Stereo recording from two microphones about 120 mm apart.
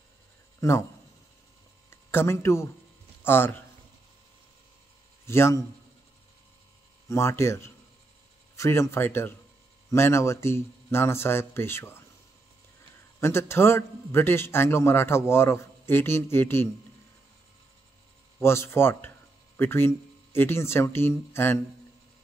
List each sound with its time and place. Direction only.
0.6 s speech: 20° left (ahead or behind)
1.9 s a man's voice: 20° left (ahead or behind)
5.2 s speech: 20° left (ahead or behind)
7.1 s a man's voice: 25° left (ahead or behind)
13.2 s a man's voice: 20° left (ahead or behind)
18.4 s speech: 20° left (ahead or behind)